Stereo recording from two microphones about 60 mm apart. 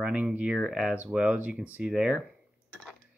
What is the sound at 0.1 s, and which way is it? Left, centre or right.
Speech, right.